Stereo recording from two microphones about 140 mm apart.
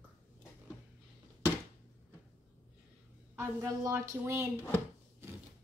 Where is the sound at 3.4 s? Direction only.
20° right (ahead or behind).